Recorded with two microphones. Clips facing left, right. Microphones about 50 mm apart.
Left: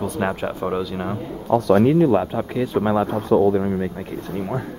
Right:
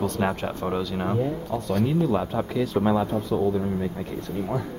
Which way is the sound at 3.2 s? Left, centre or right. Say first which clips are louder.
Left 7 dB; left.